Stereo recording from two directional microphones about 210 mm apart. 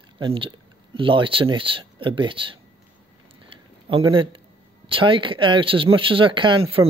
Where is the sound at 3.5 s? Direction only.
25° right (ahead or behind).